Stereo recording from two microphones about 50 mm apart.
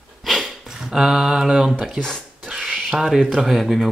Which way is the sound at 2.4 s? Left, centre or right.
Centre.